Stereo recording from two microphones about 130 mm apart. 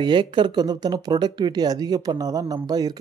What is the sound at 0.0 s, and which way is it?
Speech, 35° right (ahead or behind).